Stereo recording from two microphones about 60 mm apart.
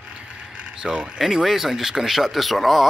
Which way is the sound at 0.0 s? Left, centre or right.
Centre.